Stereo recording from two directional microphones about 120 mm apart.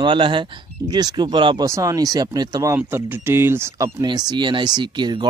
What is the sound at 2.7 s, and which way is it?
Speech, 20° right (ahead or behind).